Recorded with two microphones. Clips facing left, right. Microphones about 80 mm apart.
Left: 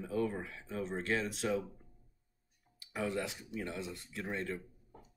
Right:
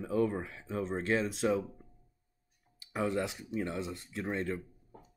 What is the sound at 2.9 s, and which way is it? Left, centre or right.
Speech, right.